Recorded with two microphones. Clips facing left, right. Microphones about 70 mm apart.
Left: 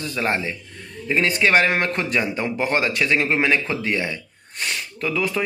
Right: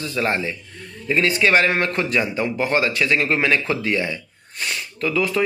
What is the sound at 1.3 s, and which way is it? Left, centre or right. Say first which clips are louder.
Speech: even; left.